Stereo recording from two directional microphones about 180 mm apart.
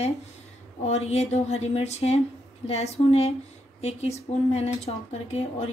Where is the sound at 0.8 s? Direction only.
35° left (ahead or behind).